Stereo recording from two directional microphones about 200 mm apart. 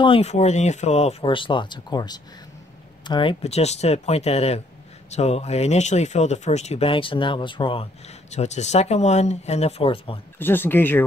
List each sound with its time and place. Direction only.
0.0 s speech: 30° left (ahead or behind)
10.4 s speech: 10° left (ahead or behind)